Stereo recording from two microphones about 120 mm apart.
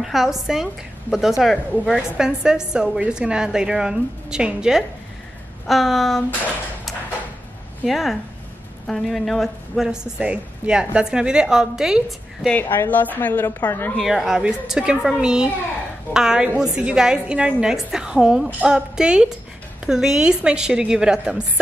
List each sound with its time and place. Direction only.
0.0 s a woman's voice: centre (ahead or behind)
7.8 s a woman's voice: centre (ahead or behind)
12.7 s speech: 15° left (ahead or behind)
13.9 s a woman's voice: centre (ahead or behind)